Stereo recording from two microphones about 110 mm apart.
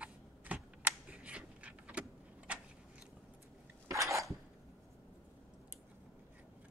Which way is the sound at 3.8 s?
30° right (ahead or behind).